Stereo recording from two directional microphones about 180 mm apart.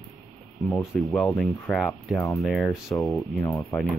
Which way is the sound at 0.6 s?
Centre (ahead or behind).